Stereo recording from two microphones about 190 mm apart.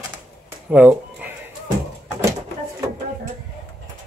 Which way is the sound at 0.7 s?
10° right (ahead or behind).